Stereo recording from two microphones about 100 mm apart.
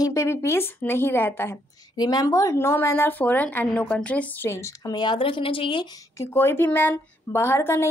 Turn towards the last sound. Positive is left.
turn(degrees=25)  # may be behind; listen again after turning